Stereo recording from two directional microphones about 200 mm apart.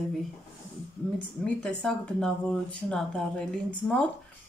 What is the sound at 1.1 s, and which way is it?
Speech, 5° left (ahead or behind).